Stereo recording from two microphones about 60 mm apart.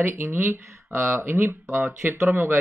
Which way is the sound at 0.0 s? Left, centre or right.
Right.